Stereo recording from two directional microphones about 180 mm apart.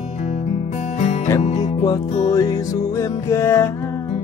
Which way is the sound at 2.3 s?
20° left (ahead or behind).